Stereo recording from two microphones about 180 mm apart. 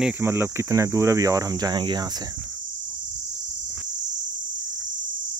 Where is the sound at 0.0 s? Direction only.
10° right (ahead or behind).